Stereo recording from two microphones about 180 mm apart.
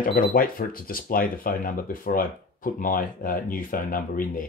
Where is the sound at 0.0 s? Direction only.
50° left (ahead or behind).